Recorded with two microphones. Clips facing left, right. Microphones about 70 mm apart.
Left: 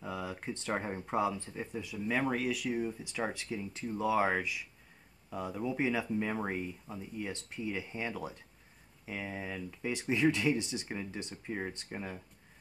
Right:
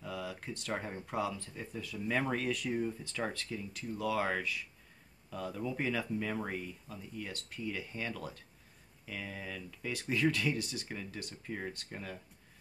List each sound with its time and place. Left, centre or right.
0.0 s speech: left